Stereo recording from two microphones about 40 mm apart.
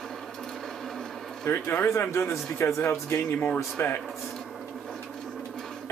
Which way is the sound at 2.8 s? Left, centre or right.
Left.